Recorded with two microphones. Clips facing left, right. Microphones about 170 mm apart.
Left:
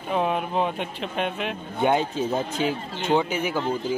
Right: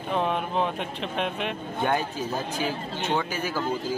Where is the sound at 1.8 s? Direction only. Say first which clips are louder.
Left 5 dB; 20° left (ahead or behind).